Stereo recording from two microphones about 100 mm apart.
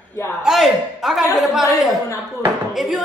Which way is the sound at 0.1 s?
25° left (ahead or behind).